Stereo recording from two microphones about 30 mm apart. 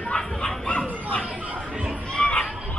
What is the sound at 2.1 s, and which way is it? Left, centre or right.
Children playing, left.